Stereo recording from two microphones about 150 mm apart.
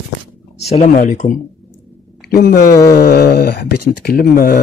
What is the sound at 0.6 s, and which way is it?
Speech, 45° left (ahead or behind).